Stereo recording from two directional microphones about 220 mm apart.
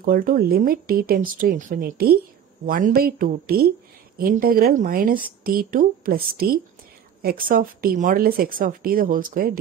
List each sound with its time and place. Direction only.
0.0 s speech: 40° right (ahead or behind)